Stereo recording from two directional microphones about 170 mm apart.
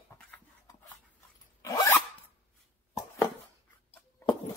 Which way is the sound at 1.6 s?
20° left (ahead or behind).